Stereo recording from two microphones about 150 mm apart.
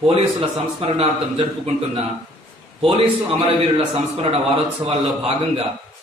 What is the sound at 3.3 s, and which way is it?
A man's voice, 40° right (ahead or behind).